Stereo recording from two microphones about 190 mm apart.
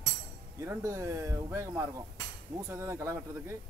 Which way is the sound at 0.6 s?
15° right (ahead or behind).